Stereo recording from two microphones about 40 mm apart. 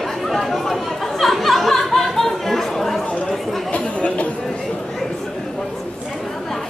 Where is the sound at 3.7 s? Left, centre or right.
Left.